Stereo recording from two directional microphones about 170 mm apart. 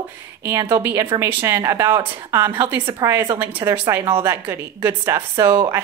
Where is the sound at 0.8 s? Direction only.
20° right (ahead or behind).